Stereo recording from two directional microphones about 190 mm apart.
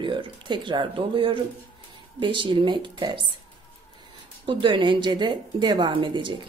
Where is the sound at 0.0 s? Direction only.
25° right (ahead or behind).